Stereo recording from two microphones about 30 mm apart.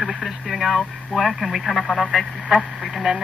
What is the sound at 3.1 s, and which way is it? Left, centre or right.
Speech, centre.